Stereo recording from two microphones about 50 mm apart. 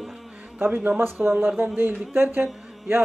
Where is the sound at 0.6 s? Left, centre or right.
Right.